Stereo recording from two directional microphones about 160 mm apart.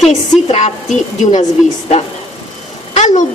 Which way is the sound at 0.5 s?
45° left (ahead or behind).